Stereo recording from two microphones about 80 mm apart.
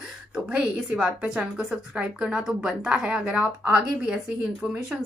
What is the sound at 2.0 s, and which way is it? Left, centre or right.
A woman's voice, centre.